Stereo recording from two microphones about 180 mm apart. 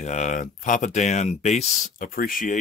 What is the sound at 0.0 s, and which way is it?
Speech, 40° left (ahead or behind).